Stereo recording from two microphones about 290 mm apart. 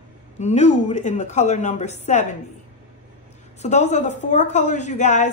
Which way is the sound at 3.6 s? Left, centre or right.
Left.